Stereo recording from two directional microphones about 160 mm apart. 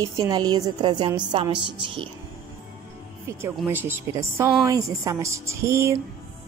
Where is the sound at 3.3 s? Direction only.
15° right (ahead or behind).